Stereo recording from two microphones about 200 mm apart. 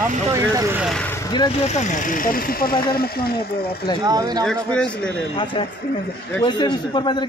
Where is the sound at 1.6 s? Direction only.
35° left (ahead or behind).